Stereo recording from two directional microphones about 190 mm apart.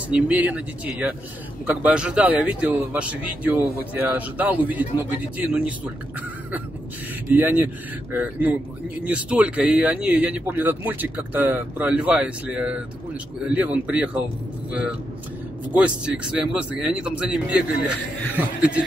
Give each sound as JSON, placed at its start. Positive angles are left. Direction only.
{"t": 0.1, "sound": "speech", "side_deg": -10}
{"t": 7.3, "sound": "speech", "side_deg": -10}